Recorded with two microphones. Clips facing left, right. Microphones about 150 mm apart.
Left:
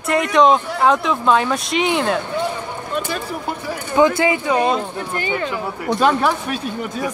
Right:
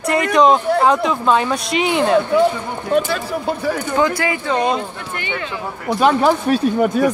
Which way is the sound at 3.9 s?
20° left (ahead or behind).